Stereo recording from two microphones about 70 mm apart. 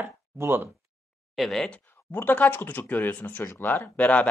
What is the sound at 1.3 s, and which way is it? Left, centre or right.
Speech, centre.